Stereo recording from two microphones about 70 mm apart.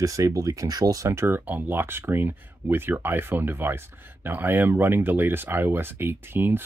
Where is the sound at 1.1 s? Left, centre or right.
Right.